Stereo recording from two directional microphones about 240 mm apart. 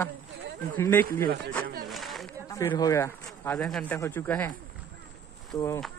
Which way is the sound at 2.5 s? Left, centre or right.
Centre.